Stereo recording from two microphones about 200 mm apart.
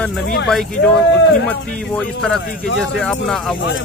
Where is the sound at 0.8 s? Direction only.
55° left (ahead or behind).